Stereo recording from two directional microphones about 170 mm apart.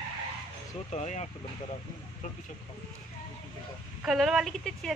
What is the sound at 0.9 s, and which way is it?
Speech, 40° left (ahead or behind).